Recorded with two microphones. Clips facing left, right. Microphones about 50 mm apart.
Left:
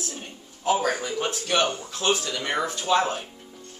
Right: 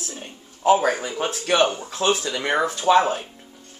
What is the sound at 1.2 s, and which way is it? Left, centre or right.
A man's voice, centre.